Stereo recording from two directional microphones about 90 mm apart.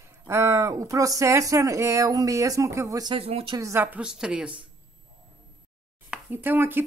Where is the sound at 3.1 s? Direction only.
85° right.